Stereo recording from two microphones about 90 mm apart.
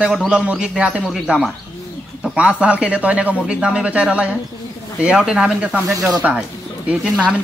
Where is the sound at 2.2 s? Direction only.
15° right (ahead or behind).